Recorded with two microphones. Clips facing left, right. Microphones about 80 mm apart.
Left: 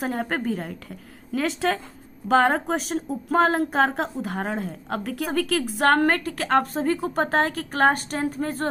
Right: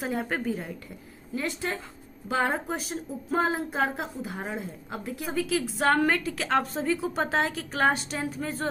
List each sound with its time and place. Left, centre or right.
0.0 s speech: left
2.2 s speech: left